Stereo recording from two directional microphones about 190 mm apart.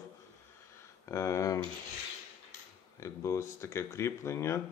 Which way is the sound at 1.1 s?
15° left (ahead or behind).